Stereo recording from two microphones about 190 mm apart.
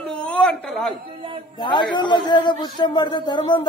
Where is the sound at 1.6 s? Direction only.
25° left (ahead or behind).